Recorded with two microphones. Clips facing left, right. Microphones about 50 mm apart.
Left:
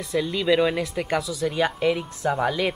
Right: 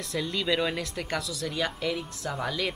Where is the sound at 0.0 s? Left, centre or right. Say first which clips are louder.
Left 6 dB; centre.